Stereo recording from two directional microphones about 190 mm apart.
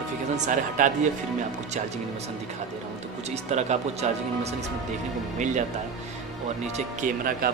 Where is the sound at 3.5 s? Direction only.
35° right (ahead or behind).